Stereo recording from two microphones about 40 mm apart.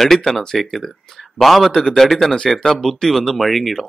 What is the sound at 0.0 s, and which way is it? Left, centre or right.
Speech, centre.